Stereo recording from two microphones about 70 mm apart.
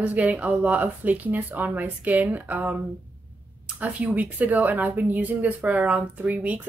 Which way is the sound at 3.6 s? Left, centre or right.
Right.